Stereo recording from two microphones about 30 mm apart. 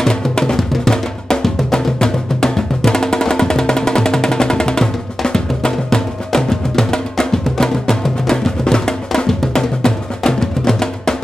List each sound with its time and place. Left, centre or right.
0.0 s music: left